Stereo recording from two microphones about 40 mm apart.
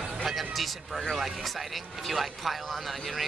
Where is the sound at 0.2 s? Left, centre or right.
Centre.